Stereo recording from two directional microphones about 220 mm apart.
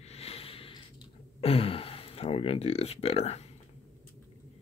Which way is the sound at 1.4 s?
25° left (ahead or behind).